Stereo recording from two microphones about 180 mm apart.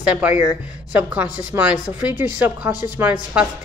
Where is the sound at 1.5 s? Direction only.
10° right (ahead or behind).